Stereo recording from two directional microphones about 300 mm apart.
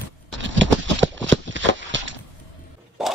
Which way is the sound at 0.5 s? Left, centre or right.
Right.